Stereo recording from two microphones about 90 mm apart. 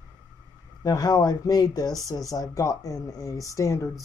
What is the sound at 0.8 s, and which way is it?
Speech, 45° left (ahead or behind).